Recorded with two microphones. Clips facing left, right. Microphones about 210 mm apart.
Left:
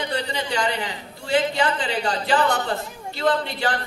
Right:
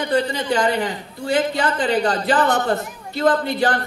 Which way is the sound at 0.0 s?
45° right (ahead or behind).